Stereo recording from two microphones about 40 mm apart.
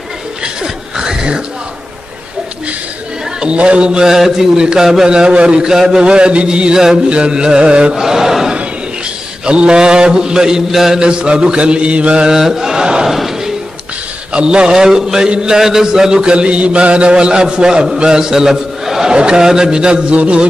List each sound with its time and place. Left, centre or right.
0.4 s chuckle: centre
3.3 s a man's voice: right
4.8 s a man's voice: centre
5.1 s a man's voice: right
5.7 s a man's voice: centre
7.9 s chant: centre
9.4 s a man's voice: right; by 11.0 s centre
11.0 s a man's voice: right
12.3 s chant: centre
13.1 s a sound: centre
14.3 s a man's voice: right
15.6 s a man's voice: centre
18.3 s a man's voice: centre; by 20.4 s right